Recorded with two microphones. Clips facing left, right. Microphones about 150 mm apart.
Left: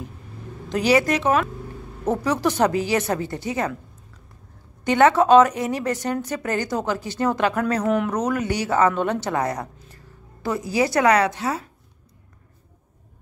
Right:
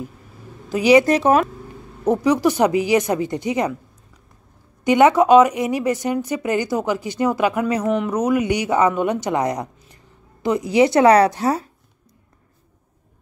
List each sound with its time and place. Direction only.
0.7 s a woman's voice: 10° right (ahead or behind)
1.0 s speech: 35° right (ahead or behind)
2.0 s a woman's voice: 10° right (ahead or behind)
4.8 s a woman's voice: 15° right (ahead or behind); by 11.7 s 40° right (ahead or behind)